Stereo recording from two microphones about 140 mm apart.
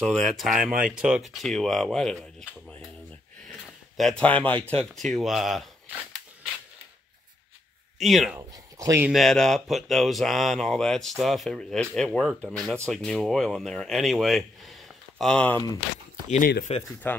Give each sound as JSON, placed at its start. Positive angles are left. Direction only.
{"t": 0.0, "sound": "speech", "side_deg": 5}
{"t": 3.9, "sound": "speech", "side_deg": 5}
{"t": 8.0, "sound": "speech", "side_deg": 0}
{"t": 8.4, "sound": "speech", "side_deg": -25}
{"t": 9.1, "sound": "speech", "side_deg": 0}
{"t": 16.3, "sound": "speech", "side_deg": 80}
{"t": 17.0, "sound": "speech", "side_deg": 15}